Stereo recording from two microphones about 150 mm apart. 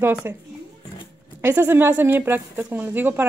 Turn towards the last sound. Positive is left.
turn(degrees=-15)  # may be behind; listen again after turning